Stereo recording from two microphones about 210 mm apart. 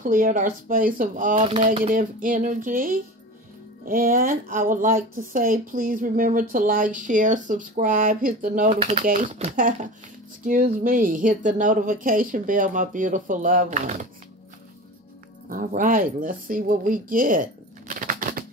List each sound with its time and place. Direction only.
0.0 s a woman's voice: 40° right (ahead or behind)
1.4 s a woman's voice: 25° right (ahead or behind)
15.5 s speech: 40° right (ahead or behind)